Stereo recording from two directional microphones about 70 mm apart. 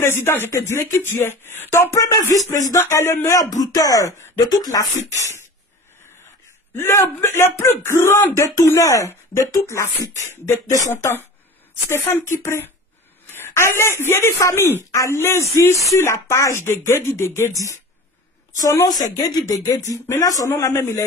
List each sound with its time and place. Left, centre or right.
0.0 s speech: left
0.5 s speech: left
2.0 s speech: left
3.3 s speech: left
6.2 s speech: left
8.6 s speech: left
12.3 s speech: left